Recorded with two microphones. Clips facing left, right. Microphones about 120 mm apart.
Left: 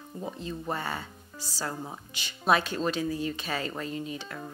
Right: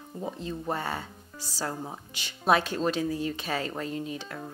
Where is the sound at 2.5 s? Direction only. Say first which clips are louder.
Right 1 dB; 40° right (ahead or behind).